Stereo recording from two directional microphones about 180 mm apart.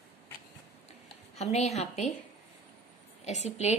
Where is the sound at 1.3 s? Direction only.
35° left (ahead or behind).